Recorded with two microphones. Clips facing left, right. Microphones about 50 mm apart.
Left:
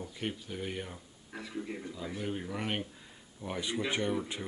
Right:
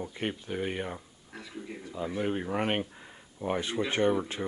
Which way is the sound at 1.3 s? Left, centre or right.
Centre.